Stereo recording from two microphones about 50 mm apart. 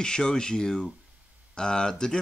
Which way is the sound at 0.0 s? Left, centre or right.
Centre.